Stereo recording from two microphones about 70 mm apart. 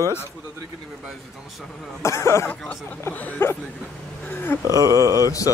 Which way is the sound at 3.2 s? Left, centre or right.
Left.